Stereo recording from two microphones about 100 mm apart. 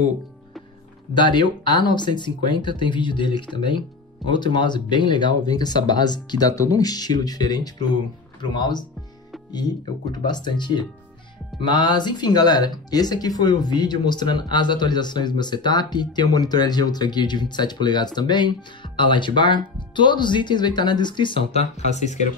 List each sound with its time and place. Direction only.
1.1 s speech: 50° left (ahead or behind)
6.5 s speech: 35° left (ahead or behind)
10.1 s speech: 45° left (ahead or behind); by 21.8 s 90° left